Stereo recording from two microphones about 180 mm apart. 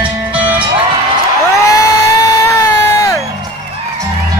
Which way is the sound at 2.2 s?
15° left (ahead or behind).